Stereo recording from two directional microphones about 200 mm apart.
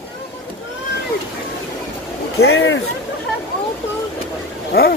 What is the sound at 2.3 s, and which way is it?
Speech, 65° left (ahead or behind).